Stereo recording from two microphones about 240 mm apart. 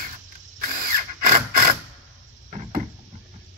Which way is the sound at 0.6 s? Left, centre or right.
Right.